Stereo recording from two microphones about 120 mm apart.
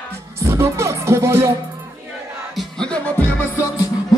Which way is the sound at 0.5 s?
25° right (ahead or behind).